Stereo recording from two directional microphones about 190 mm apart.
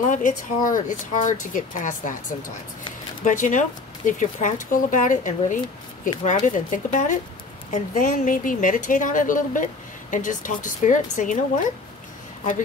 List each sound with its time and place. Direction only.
0.1 s speech: 45° left (ahead or behind)
3.3 s speech: 40° left (ahead or behind)